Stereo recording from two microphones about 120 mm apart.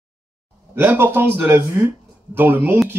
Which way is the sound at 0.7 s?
20° right (ahead or behind).